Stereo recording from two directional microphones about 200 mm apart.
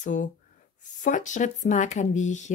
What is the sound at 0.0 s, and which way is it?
Speech, 40° left (ahead or behind).